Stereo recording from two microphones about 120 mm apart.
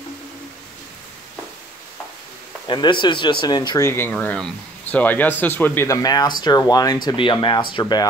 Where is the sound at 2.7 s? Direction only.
40° left (ahead or behind).